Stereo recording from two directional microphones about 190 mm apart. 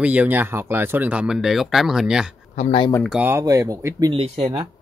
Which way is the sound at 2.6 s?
30° left (ahead or behind).